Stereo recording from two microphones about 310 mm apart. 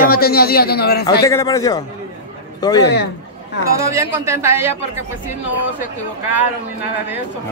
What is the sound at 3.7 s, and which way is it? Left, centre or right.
Speech, centre.